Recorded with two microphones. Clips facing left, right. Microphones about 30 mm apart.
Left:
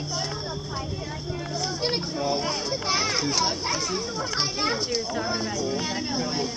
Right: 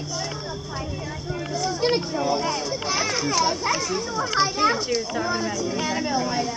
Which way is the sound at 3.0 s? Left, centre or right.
Centre.